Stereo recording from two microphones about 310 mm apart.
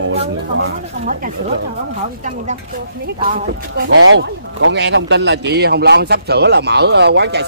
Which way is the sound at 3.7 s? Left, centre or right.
Right.